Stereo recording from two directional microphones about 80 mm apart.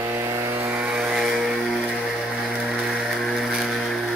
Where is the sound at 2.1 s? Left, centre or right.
Centre.